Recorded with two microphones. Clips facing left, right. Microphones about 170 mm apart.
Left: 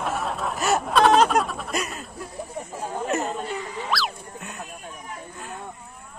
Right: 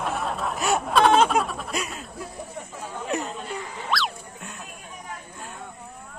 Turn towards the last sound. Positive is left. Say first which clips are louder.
# left 1 dB
turn(degrees=0)  # may be behind; listen again after turning